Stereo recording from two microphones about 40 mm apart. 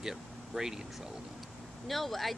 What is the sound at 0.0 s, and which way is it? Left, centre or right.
Speech, centre.